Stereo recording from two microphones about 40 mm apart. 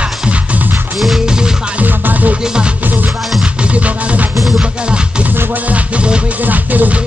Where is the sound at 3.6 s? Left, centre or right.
Right.